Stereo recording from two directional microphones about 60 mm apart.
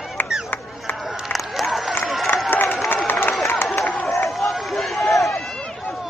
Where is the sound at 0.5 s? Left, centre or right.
Left.